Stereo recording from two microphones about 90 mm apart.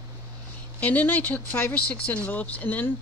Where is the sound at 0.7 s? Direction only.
15° left (ahead or behind).